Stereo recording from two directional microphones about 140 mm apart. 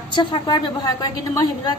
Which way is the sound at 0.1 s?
35° left (ahead or behind).